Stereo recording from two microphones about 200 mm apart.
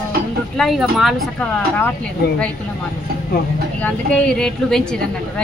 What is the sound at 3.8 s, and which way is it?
Speech, 5° left (ahead or behind).